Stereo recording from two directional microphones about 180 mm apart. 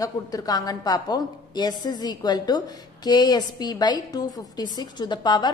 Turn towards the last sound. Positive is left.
turn(degrees=25)  # may be behind; listen again after turning